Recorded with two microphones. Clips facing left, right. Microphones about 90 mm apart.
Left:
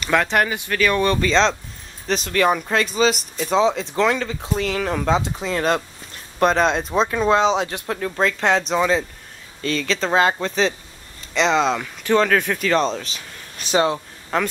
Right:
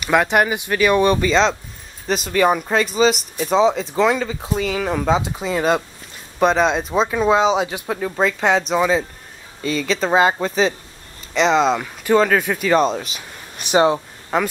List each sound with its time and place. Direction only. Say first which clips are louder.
0.0 s speech: right 3 dB; 15° right (ahead or behind)
1.3 s speech: right 1 dB; 5° right (ahead or behind)
14.3 s speech: right 2 dB; 10° right (ahead or behind)